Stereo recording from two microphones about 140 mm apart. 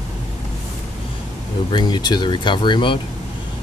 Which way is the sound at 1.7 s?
35° left (ahead or behind).